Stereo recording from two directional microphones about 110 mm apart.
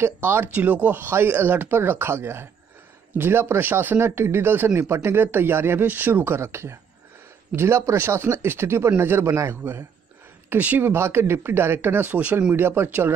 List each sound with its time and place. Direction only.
0.0 s speech: 20° right (ahead or behind)